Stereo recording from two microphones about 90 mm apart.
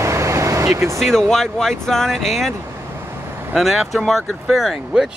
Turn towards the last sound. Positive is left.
turn(degrees=-5)  # may be behind; listen again after turning